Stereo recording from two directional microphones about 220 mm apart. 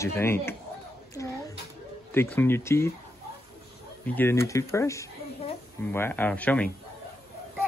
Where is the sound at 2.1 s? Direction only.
10° left (ahead or behind).